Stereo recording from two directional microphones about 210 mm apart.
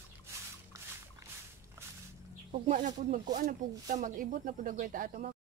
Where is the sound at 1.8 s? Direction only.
15° right (ahead or behind).